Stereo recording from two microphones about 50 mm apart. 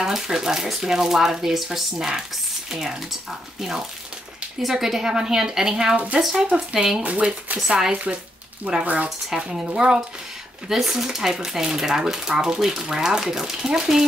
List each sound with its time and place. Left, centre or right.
0.0 s speech: centre
9.8 s speech: centre